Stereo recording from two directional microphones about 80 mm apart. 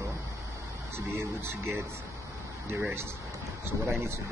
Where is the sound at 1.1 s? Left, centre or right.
Right.